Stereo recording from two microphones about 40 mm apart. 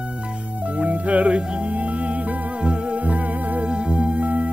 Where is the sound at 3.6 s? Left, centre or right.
Right.